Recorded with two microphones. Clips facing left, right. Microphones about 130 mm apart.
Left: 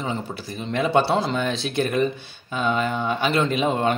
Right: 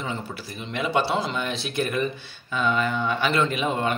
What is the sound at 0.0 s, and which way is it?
A man's voice, 25° left (ahead or behind).